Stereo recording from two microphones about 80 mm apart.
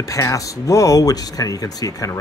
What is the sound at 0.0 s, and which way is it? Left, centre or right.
Speech, left.